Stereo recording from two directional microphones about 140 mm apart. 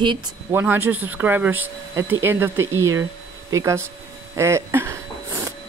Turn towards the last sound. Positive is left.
turn(degrees=-20)  # may be behind; listen again after turning